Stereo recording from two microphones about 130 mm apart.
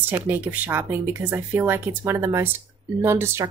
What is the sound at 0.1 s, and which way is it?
Speech, 15° right (ahead or behind).